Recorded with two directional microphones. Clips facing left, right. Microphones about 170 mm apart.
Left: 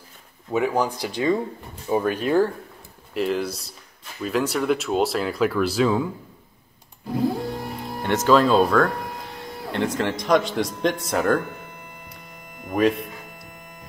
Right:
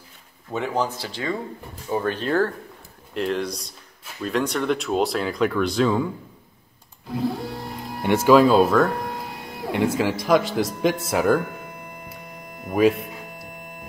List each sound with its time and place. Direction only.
0.5 s speech: 10° left (ahead or behind)
8.0 s speech: 10° right (ahead or behind)
12.6 s music: 5° right (ahead or behind)